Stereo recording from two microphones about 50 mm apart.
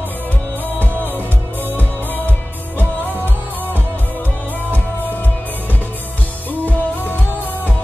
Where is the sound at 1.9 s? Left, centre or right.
Left.